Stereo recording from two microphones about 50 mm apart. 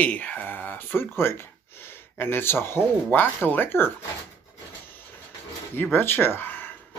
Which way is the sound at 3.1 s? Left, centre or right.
Left.